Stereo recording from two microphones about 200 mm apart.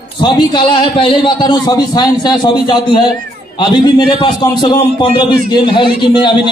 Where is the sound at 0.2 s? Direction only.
20° left (ahead or behind).